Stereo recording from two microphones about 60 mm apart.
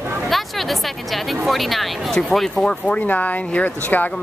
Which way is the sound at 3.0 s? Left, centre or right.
Left.